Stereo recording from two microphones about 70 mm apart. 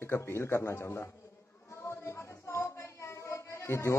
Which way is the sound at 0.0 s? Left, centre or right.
Left.